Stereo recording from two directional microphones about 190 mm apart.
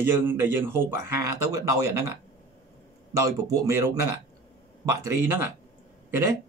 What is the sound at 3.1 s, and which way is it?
A man's voice, 15° right (ahead or behind).